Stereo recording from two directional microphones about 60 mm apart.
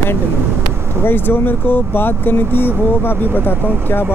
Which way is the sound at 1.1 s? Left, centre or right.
Left.